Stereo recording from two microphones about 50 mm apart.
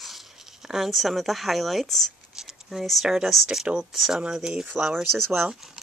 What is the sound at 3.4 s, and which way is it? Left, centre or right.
Speech, centre.